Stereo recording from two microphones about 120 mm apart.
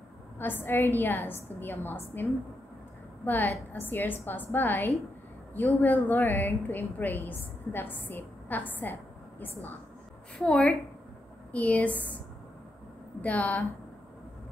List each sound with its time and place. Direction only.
0.4 s a woman's voice: 15° left (ahead or behind)
10.3 s a woman's voice: 10° left (ahead or behind)
13.2 s a woman's voice: 10° left (ahead or behind)